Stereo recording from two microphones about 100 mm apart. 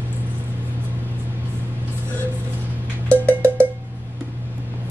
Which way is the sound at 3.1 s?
25° right (ahead or behind).